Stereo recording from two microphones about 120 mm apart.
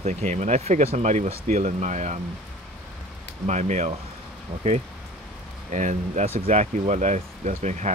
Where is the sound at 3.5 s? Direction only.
75° right (ahead or behind).